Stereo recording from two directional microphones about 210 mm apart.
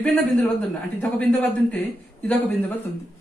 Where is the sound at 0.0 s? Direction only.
5° left (ahead or behind).